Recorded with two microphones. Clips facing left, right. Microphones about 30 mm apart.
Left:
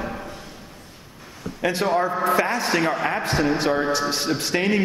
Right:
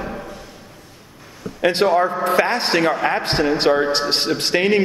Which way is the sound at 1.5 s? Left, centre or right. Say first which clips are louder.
Right 2 dB; right.